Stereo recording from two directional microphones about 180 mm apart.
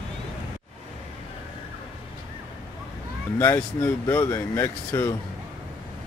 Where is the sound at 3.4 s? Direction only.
10° left (ahead or behind).